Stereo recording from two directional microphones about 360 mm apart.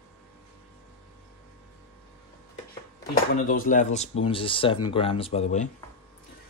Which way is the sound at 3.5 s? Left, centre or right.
Left.